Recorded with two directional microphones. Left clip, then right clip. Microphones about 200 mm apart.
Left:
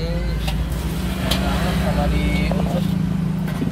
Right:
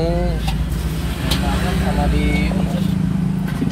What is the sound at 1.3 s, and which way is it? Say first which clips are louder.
Vehicle: right 1 dB; 55° left (ahead or behind).